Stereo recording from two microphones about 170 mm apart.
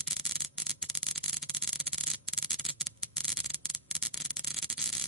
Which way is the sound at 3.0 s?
35° right (ahead or behind).